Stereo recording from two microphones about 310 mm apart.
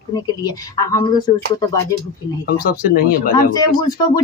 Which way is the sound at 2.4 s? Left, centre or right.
Left.